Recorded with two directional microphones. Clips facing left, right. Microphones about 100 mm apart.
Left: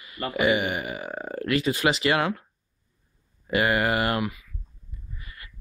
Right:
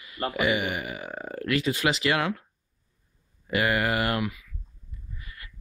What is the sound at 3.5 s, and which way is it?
Speech, 35° left (ahead or behind).